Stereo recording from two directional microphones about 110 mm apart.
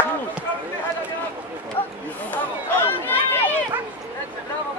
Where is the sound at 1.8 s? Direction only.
55° left (ahead or behind).